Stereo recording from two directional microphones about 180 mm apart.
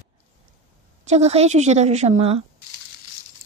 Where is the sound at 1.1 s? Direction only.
35° right (ahead or behind).